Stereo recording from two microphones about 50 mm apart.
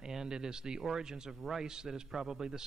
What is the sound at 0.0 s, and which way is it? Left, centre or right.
Speech, centre.